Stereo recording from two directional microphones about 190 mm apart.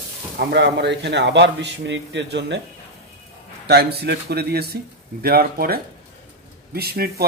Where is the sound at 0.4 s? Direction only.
65° right (ahead or behind).